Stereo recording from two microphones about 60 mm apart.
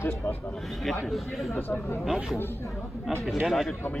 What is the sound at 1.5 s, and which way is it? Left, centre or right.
Speech, left.